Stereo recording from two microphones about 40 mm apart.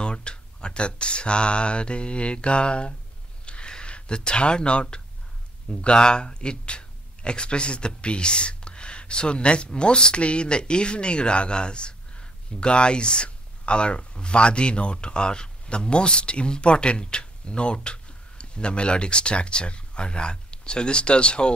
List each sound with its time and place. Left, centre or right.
0.0 s speech: left
3.4 s a sound: left
5.7 s speech: left